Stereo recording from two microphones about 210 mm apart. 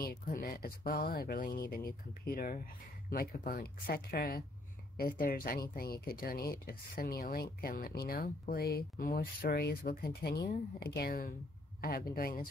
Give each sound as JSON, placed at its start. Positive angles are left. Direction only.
{"t": 0.0, "sound": "speech", "side_deg": 45}